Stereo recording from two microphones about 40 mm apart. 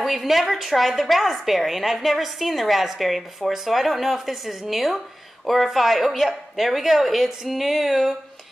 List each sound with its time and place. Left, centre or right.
0.0 s a woman's voice: centre